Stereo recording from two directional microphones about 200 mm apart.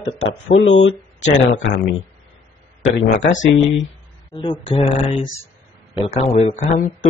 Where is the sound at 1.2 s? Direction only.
40° left (ahead or behind).